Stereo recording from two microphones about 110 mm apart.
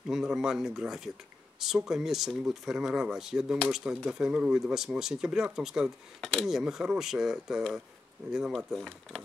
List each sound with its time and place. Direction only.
0.1 s speech: 5° right (ahead or behind)